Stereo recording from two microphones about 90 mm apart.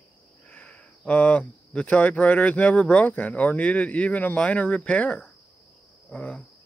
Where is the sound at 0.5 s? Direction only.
15° left (ahead or behind).